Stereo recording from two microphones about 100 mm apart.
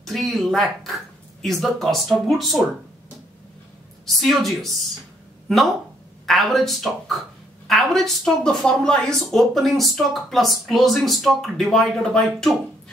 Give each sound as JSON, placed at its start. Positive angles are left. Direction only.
{"t": 0.0, "sound": "speech", "side_deg": 0}
{"t": 4.0, "sound": "a woman's voice", "side_deg": 0}
{"t": 6.2, "sound": "a woman's voice", "side_deg": 0}